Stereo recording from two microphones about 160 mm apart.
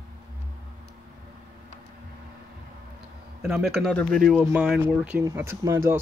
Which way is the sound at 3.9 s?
5° left (ahead or behind).